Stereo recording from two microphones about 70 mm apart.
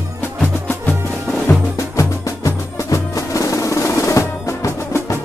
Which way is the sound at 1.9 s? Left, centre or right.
Left.